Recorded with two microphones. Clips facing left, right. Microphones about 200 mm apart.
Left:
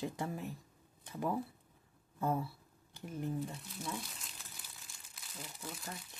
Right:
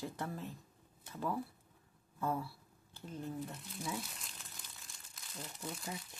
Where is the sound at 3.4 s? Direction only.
5° left (ahead or behind).